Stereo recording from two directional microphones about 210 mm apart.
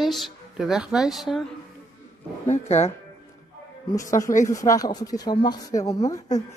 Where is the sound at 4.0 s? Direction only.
15° left (ahead or behind).